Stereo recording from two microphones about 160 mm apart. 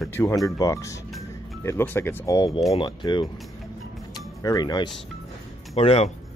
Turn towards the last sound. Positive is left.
turn(degrees=40)  # may be behind; listen again after turning